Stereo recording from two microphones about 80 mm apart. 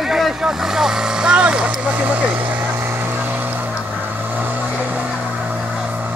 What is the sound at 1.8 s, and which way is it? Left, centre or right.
Vehicle, centre.